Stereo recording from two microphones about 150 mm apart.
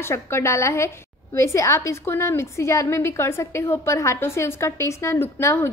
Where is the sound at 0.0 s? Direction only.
15° left (ahead or behind).